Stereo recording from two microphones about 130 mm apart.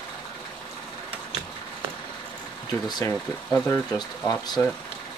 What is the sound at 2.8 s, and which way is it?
Speech, 35° left (ahead or behind).